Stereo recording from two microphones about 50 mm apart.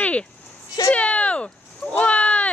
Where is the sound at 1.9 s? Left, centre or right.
Left.